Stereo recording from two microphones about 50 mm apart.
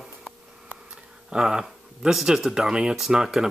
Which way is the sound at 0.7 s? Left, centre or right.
Right.